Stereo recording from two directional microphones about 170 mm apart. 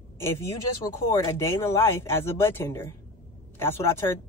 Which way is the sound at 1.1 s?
15° left (ahead or behind).